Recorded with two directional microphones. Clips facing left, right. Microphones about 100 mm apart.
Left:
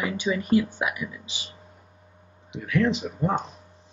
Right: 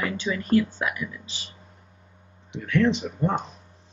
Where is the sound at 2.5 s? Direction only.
5° left (ahead or behind).